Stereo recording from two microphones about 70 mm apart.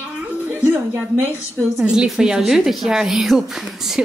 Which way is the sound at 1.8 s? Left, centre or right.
Centre.